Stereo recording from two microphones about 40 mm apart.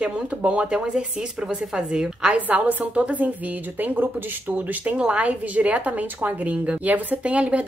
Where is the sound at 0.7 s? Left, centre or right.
Centre.